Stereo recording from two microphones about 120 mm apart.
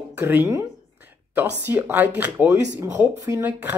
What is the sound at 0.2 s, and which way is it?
Speech, 20° right (ahead or behind).